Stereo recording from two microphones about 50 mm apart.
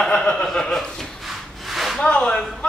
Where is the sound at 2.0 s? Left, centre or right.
Centre.